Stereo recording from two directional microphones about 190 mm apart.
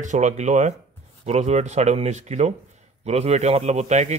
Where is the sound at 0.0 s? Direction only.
40° right (ahead or behind).